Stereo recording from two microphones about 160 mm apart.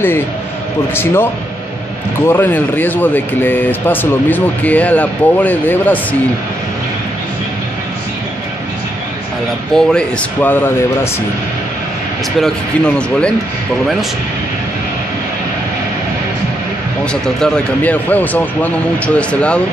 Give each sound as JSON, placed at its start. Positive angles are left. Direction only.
{"t": 0.9, "sound": "speech", "side_deg": 15}
{"t": 9.8, "sound": "speech", "side_deg": 5}
{"t": 12.4, "sound": "speech", "side_deg": 5}
{"t": 17.0, "sound": "speech", "side_deg": 5}